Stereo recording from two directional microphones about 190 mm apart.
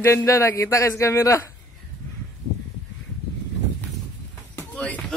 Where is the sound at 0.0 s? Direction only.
15° left (ahead or behind).